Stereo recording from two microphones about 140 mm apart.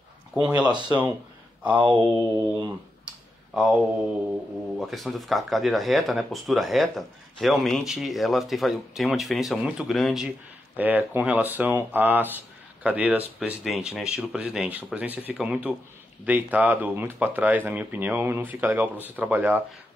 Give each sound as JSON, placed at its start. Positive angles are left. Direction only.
{"t": 0.3, "sound": "a man's voice", "side_deg": -10}
{"t": 0.7, "sound": "speech", "side_deg": -35}
{"t": 1.6, "sound": "speech", "side_deg": -10}
{"t": 3.5, "sound": "speech", "side_deg": -5}
{"t": 10.8, "sound": "speech", "side_deg": -10}